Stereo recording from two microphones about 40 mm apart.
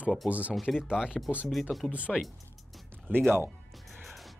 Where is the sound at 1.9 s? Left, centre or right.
Right.